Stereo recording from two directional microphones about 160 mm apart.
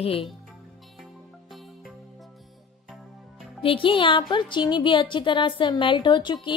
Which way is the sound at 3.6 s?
35° left (ahead or behind).